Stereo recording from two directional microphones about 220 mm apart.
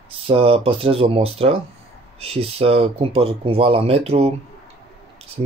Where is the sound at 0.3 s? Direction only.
25° right (ahead or behind).